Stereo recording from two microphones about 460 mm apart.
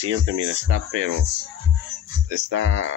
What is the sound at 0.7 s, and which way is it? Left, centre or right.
Speech, right.